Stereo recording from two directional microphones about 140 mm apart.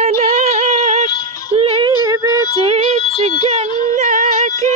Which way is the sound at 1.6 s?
40° right (ahead or behind).